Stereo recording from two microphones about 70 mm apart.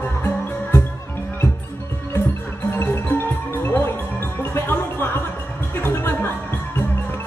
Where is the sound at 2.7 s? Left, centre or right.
Left.